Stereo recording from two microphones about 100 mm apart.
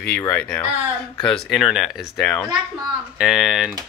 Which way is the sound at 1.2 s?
Centre (ahead or behind).